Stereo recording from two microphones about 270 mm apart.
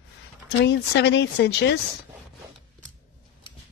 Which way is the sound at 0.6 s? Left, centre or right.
Left.